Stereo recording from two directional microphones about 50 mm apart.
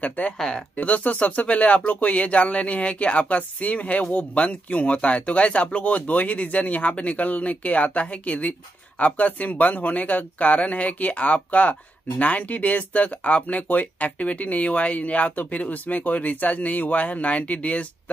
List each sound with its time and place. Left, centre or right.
0.0 s speech: left
0.4 s speech: centre
0.7 s speech: left